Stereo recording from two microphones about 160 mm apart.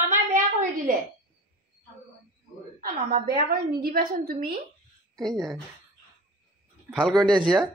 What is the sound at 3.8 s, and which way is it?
Speech, 65° right (ahead or behind).